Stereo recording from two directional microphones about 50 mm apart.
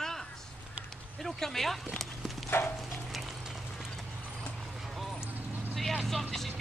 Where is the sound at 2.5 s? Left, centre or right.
Left.